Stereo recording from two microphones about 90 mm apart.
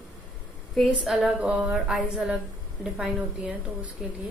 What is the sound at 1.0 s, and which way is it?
A woman's voice, 10° right (ahead or behind).